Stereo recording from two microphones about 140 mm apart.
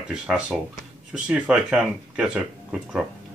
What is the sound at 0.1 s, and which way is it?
Speech, 5° right (ahead or behind).